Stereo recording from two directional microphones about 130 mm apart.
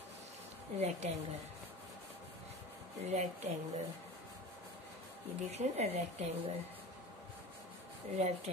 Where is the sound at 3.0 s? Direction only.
60° right (ahead or behind).